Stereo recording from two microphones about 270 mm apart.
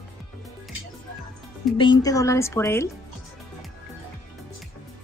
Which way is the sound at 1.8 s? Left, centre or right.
Centre.